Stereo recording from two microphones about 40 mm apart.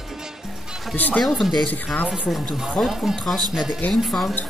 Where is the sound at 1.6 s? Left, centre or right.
Left.